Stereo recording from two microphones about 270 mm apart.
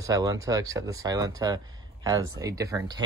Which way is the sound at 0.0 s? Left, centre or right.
Centre.